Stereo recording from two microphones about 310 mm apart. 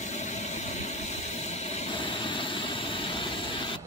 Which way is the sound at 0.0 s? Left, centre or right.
Left.